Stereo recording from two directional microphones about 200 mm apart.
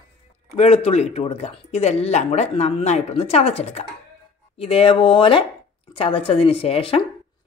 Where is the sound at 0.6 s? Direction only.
30° left (ahead or behind).